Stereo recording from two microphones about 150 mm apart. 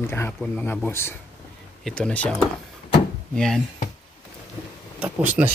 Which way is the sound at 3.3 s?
5° left (ahead or behind).